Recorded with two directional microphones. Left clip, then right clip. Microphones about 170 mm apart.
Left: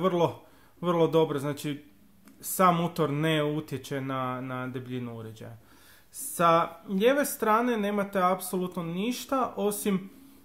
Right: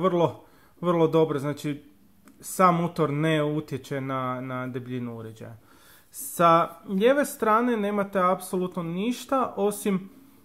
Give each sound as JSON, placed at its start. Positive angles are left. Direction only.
{"t": 0.0, "sound": "speech", "side_deg": -20}